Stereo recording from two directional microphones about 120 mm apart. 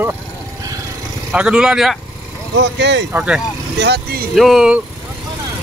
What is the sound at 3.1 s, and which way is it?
Speech, 10° right (ahead or behind).